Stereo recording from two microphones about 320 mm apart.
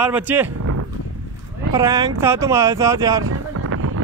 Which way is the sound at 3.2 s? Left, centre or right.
Right.